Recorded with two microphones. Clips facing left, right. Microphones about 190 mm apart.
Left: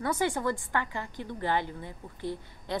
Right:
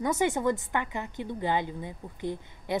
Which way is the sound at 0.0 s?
20° right (ahead or behind).